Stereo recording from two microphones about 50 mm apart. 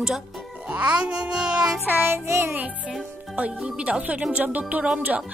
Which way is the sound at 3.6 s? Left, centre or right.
Right.